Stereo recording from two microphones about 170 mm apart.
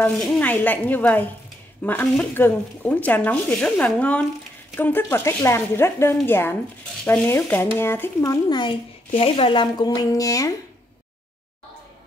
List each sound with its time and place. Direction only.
0.0 s speech: 10° left (ahead or behind)